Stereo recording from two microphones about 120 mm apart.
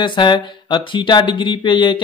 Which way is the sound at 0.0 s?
40° left (ahead or behind).